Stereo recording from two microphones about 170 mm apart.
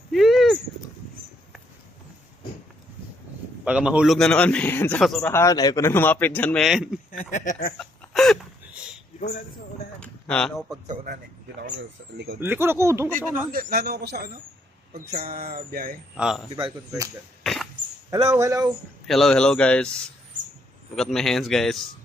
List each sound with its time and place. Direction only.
0.1 s a sound: centre (ahead or behind)
3.6 s a man's voice: 10° right (ahead or behind)
5.3 s speech: 20° left (ahead or behind); by 7.0 s 5° right (ahead or behind)
7.1 s speech: 50° left (ahead or behind)
7.8 s a sound: centre (ahead or behind)
9.9 s a sound: 5° left (ahead or behind)
12.4 s speech: 15° right (ahead or behind)
13.5 s speech: 60° right (ahead or behind)
15.2 s speech: 60° right (ahead or behind)
16.2 s a man's voice: 5° right (ahead or behind)
17.4 s a sound: centre (ahead or behind)
18.3 s speech: 20° right (ahead or behind)
19.0 s a man's voice: centre (ahead or behind)